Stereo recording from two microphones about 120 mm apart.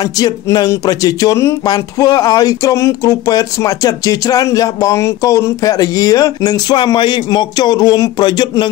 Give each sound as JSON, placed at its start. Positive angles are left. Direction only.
{"t": 0.0, "sound": "speech", "side_deg": 30}